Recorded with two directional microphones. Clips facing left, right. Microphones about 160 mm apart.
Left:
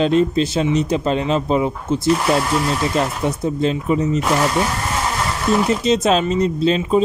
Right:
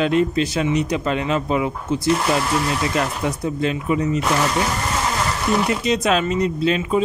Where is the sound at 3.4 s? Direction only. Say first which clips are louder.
Left 4 dB; 30° left (ahead or behind).